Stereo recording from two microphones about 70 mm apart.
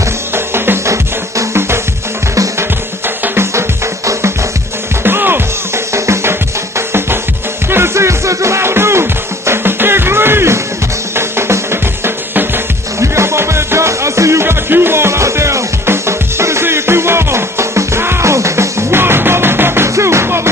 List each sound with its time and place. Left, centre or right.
1.5 s music: right
3.3 s music: right
5.0 s music: right
5.9 s music: right
7.7 s music: right